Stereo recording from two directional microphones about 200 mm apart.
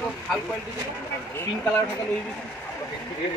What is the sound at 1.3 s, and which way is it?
Speech, 10° left (ahead or behind).